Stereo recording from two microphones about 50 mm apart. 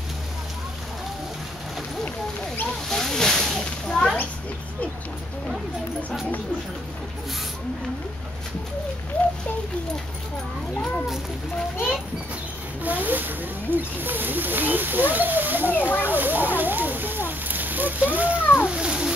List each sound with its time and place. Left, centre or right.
2.9 s snake: centre
12.8 s speech: right
15.7 s speech: left
16.1 s a sound: right
18.7 s cat: centre